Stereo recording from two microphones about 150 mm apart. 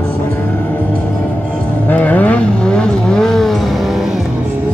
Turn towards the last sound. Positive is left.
turn(degrees=5)  # may be behind; listen again after turning